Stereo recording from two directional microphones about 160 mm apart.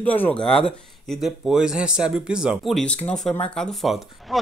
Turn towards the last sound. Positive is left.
turn(degrees=0)  # may be behind; listen again after turning